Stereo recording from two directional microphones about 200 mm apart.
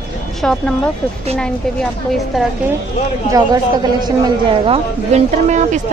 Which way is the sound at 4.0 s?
25° right (ahead or behind).